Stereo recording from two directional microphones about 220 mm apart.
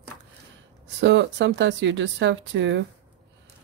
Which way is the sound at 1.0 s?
55° right (ahead or behind).